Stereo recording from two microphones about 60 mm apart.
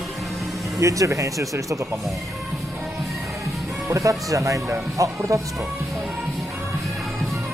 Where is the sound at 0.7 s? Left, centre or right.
Right.